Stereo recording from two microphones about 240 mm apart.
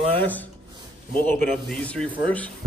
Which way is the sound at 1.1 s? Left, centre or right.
Centre.